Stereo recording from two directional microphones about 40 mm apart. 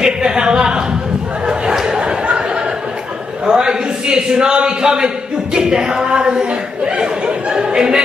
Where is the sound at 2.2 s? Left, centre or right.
Right.